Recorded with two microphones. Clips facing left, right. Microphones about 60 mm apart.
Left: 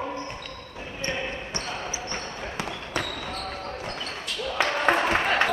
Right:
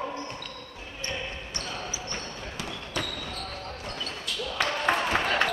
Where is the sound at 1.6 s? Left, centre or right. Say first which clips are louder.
Left 1 dB; left.